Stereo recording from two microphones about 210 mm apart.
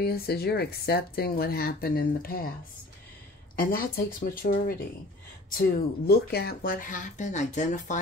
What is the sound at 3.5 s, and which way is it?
Speech, 45° left (ahead or behind).